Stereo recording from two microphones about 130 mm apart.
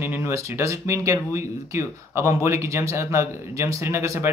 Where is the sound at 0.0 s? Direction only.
20° right (ahead or behind).